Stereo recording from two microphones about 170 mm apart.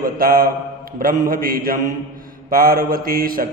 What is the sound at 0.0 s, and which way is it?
A man's voice, 60° right (ahead or behind).